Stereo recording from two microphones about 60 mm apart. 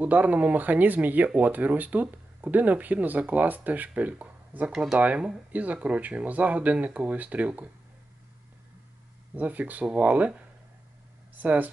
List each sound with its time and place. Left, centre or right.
0.0 s speech: right
9.3 s speech: right
11.3 s speech: right